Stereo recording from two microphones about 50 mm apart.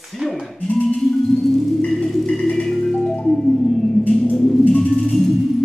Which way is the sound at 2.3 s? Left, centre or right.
Centre.